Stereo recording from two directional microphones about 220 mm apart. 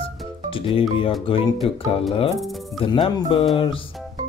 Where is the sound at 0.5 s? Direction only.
25° left (ahead or behind).